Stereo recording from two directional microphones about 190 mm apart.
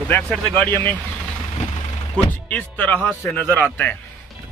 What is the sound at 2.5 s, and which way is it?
Speech, 10° left (ahead or behind).